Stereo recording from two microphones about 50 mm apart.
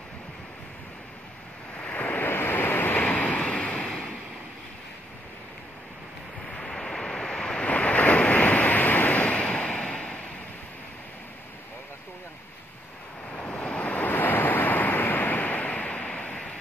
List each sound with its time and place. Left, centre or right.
1.8 s waves: left
3.1 s waves: left
6.4 s waves: centre
7.6 s waves: left
13.3 s waves: left
14.1 s waves: left; by 16.5 s centre